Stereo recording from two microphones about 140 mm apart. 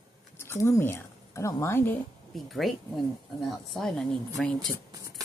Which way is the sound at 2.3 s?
Centre (ahead or behind).